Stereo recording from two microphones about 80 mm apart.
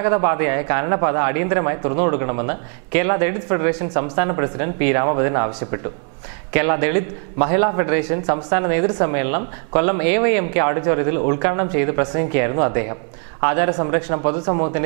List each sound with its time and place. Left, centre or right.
0.0 s a man's voice: right